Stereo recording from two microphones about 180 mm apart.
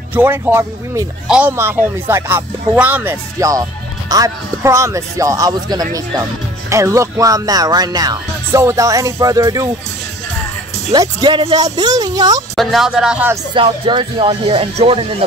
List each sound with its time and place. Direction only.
0.1 s speech: 10° right (ahead or behind)
4.1 s music: 20° right (ahead or behind)
10.9 s music: 25° right (ahead or behind)
12.5 s speech: centre (ahead or behind)
13.6 s speech: 30° right (ahead or behind)